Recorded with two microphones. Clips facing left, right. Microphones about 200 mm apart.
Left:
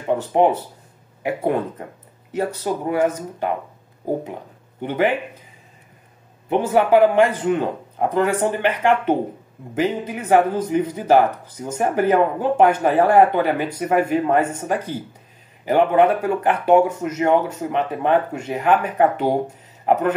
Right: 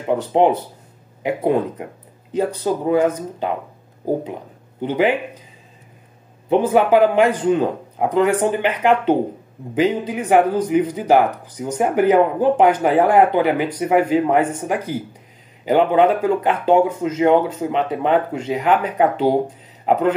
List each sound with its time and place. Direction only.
0.1 s speech: 20° right (ahead or behind)
4.8 s speech: 15° right (ahead or behind)
6.5 s speech: 15° right (ahead or behind)